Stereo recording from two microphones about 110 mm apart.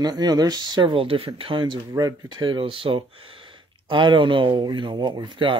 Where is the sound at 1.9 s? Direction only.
40° right (ahead or behind).